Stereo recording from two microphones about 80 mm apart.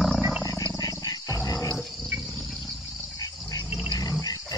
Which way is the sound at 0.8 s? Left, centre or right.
Left.